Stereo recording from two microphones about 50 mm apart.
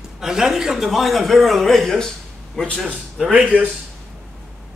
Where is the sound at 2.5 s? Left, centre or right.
Centre.